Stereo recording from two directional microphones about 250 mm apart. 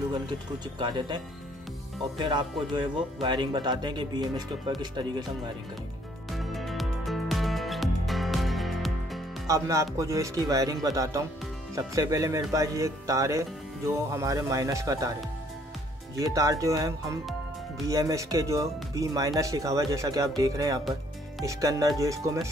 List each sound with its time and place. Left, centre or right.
0.7 s speech: centre
6.3 s music: centre
9.5 s speech: centre
16.2 s speech: centre